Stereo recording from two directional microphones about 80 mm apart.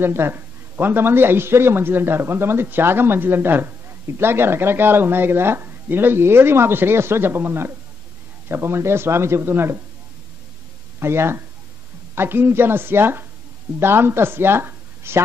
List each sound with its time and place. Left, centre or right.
0.0 s speech: right
11.0 s speech: right